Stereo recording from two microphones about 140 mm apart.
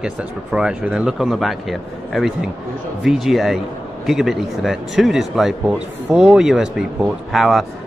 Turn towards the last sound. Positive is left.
turn(degrees=0)  # may be behind; listen again after turning